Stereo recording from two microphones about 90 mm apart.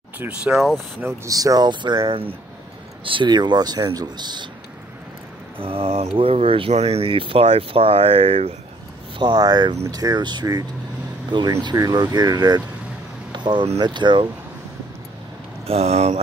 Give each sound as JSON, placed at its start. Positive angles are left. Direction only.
{"t": 0.4, "sound": "speech", "side_deg": -10}
{"t": 1.0, "sound": "speech", "side_deg": -40}
{"t": 1.7, "sound": "speech", "side_deg": -55}
{"t": 5.6, "sound": "speech", "side_deg": -90}
{"t": 9.2, "sound": "speech", "side_deg": -50}
{"t": 15.7, "sound": "speech", "side_deg": -90}